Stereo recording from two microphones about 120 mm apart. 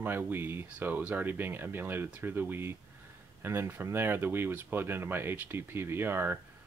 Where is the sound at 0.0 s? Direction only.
15° right (ahead or behind).